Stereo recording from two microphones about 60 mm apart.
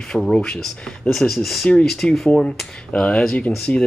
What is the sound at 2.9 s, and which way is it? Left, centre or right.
Speech, centre.